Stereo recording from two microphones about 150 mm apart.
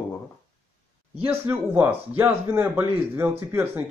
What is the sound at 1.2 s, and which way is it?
Speech, 15° right (ahead or behind).